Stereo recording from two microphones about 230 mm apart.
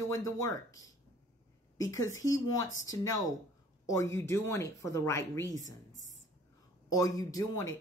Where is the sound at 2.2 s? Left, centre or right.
Centre.